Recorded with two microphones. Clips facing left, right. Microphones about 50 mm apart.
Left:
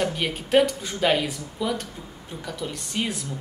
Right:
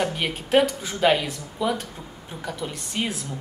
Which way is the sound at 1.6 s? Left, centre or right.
Centre.